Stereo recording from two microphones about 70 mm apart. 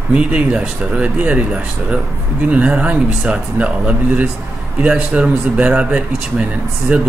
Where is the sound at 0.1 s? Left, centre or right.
Centre.